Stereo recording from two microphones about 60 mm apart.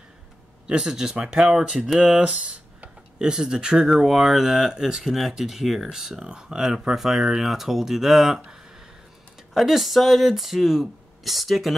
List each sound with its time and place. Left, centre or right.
0.7 s speech: centre
2.1 s speech: centre
9.5 s speech: centre